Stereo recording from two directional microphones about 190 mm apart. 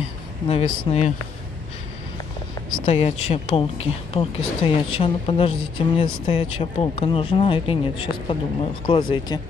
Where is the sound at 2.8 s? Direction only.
30° left (ahead or behind).